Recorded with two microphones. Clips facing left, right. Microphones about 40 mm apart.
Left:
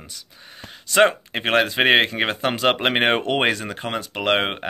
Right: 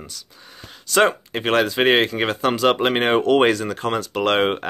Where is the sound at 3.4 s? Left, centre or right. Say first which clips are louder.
Right 4 dB; left.